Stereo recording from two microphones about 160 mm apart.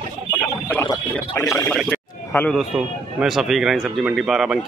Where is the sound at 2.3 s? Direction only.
15° left (ahead or behind).